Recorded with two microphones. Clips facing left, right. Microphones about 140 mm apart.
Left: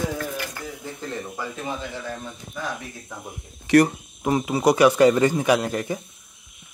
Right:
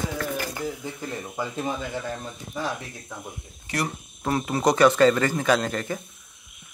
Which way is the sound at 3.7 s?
90° left.